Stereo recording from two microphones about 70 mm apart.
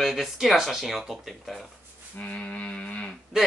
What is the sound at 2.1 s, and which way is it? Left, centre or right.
Music, left.